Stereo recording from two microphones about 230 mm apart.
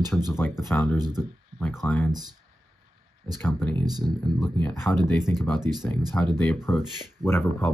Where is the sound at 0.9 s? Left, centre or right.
Centre.